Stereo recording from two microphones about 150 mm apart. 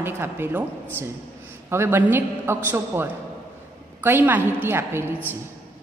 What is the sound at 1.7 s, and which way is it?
A woman's voice, 15° right (ahead or behind).